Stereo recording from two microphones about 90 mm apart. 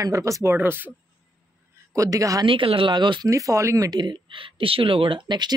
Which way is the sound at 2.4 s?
80° right.